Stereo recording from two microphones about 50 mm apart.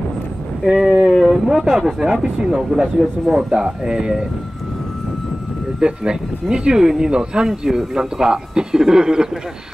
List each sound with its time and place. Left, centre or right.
0.7 s speech: centre
5.8 s speech: centre